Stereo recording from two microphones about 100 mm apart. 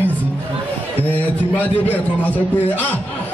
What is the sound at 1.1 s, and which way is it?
A man's voice, 15° left (ahead or behind).